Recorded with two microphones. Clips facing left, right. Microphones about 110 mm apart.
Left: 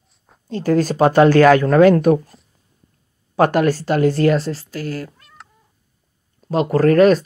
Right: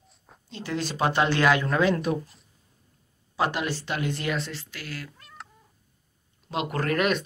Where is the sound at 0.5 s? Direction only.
45° left (ahead or behind).